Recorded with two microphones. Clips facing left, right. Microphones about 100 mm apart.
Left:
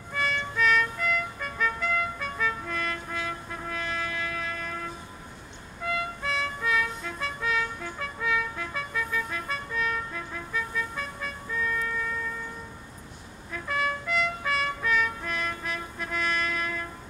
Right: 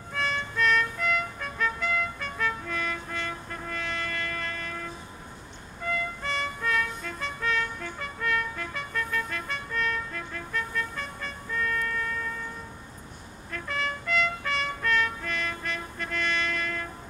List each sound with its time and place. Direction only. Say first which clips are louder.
0.1 s music: left 1 dB; centre (ahead or behind)
5.9 s music: left 1 dB; centre (ahead or behind)
13.5 s trumpet: left 3 dB; 5° left (ahead or behind)